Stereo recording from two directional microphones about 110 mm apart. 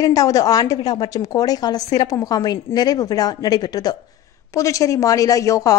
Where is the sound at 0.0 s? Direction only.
30° left (ahead or behind).